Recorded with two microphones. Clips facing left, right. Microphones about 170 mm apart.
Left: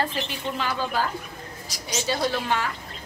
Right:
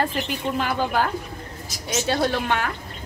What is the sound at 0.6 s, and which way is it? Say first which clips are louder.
A woman's voice: right 3 dB; 55° right (ahead or behind).